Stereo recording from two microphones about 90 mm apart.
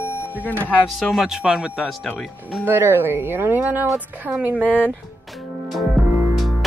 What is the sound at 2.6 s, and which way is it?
A woman's voice, 25° right (ahead or behind).